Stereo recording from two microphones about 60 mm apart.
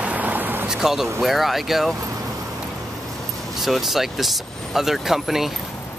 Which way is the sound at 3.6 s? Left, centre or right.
Centre.